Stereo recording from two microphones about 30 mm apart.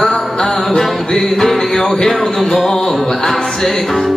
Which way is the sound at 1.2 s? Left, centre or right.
Centre.